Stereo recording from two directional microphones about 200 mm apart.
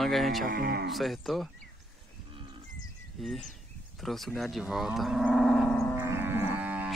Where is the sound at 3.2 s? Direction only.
Centre (ahead or behind).